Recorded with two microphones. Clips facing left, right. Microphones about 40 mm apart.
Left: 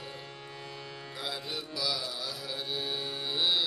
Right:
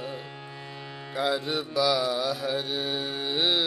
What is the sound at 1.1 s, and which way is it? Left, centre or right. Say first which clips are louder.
Music: right 11 dB; right.